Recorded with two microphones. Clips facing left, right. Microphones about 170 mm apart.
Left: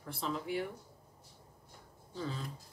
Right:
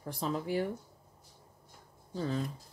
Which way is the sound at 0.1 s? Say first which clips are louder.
Right 3 dB; 40° right (ahead or behind).